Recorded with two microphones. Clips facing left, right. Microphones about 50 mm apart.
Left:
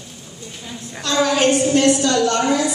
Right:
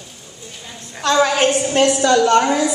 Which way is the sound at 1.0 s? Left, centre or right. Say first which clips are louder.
Right 2 dB; right.